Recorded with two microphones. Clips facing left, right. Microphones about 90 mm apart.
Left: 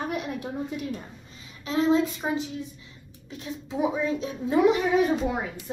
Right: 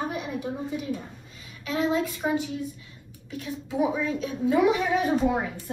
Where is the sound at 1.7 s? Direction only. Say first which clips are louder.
Left 3 dB; 25° left (ahead or behind).